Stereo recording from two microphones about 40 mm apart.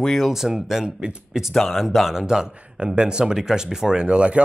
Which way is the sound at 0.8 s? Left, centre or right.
Right.